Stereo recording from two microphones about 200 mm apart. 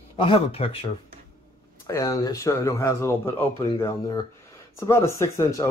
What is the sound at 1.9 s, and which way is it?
Speech, 15° left (ahead or behind).